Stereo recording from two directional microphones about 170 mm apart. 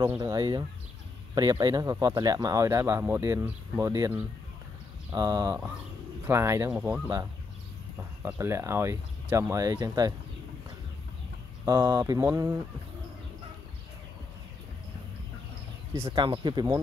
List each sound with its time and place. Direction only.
0.2 s speech: 25° right (ahead or behind)
11.6 s speech: 20° right (ahead or behind)
15.9 s a sound: 15° right (ahead or behind)
16.2 s speech: 25° right (ahead or behind)